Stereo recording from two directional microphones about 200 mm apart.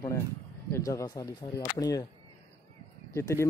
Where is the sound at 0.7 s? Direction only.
15° left (ahead or behind).